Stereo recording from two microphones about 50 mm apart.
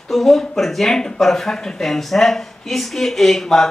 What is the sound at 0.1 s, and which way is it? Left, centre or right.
Speech, centre.